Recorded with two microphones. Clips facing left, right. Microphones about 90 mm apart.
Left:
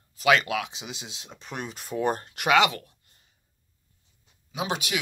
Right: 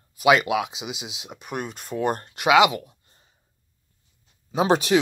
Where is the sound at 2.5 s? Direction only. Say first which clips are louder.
Right 4 dB; 15° right (ahead or behind).